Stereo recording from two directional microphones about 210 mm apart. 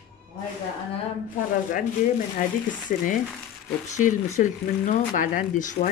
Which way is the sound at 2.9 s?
40° left (ahead or behind).